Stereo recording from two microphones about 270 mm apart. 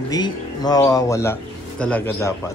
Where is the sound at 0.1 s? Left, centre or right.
Centre.